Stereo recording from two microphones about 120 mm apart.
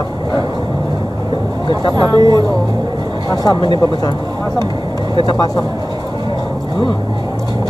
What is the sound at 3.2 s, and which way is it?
Speech, 35° left (ahead or behind).